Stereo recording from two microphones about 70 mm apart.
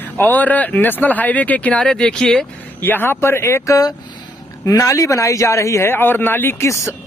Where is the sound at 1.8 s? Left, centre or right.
Centre.